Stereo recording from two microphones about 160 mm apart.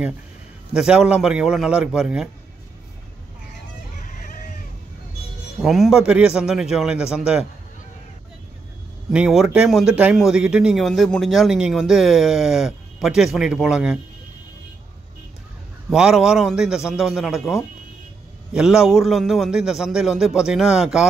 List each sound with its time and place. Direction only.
0.7 s a man's voice: 5° right (ahead or behind)
4.0 s vehicle: 55° left (ahead or behind)
5.6 s a man's voice: centre (ahead or behind)
9.1 s a man's voice: 5° right (ahead or behind)
15.9 s a man's voice: 5° right (ahead or behind)